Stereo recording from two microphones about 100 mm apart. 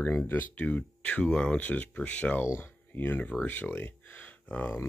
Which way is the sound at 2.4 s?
25° left (ahead or behind).